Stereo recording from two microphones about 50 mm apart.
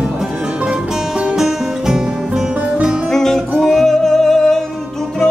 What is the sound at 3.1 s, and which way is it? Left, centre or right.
Music, centre.